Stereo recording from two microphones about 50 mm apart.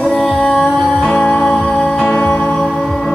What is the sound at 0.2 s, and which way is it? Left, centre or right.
Music, centre.